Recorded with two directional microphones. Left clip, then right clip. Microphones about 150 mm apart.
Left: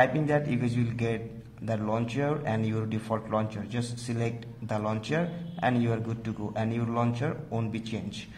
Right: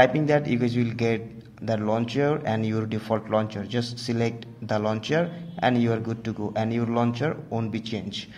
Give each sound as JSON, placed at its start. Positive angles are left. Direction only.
{"t": 0.0, "sound": "speech", "side_deg": -30}